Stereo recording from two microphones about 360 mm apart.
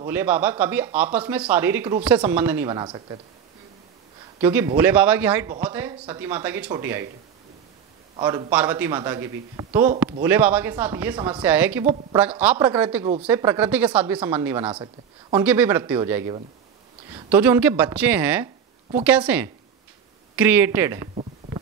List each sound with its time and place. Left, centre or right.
0.0 s a man's voice: centre
4.4 s speech: centre
8.2 s a man's voice: centre